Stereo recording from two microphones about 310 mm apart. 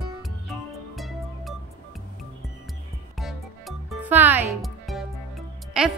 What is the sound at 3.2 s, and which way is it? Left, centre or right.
Music, centre.